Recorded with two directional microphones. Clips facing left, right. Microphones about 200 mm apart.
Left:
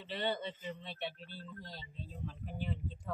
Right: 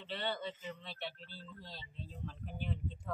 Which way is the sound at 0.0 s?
15° left (ahead or behind).